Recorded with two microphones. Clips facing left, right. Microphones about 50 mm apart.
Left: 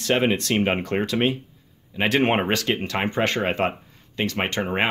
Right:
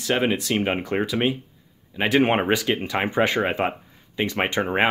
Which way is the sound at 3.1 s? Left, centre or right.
Centre.